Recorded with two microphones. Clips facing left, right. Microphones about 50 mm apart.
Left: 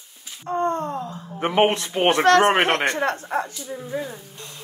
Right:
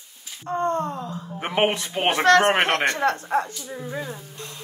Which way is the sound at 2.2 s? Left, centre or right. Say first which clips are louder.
Even; left.